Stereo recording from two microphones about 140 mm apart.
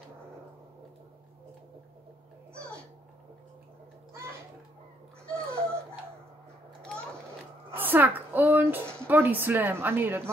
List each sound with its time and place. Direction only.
5.5 s music: 20° right (ahead or behind)
7.7 s a woman's voice: 15° right (ahead or behind)